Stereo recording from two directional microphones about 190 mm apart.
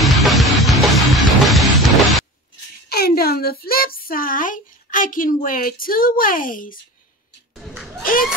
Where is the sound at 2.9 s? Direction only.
55° left (ahead or behind).